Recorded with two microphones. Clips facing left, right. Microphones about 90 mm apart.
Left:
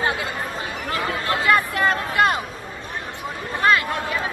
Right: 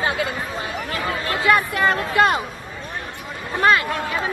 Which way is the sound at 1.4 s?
25° right (ahead or behind).